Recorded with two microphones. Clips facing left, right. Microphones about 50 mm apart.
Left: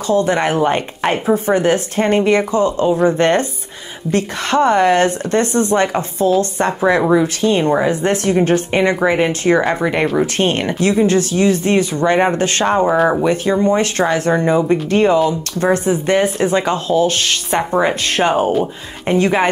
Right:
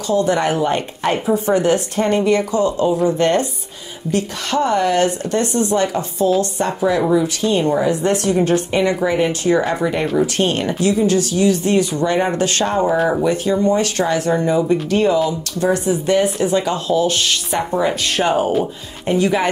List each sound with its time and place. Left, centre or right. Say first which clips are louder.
0.1 s speech: left 1 dB; left